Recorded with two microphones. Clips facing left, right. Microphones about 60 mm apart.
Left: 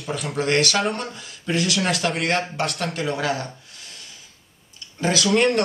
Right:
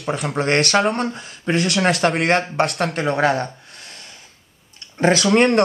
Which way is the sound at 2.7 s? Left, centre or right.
Right.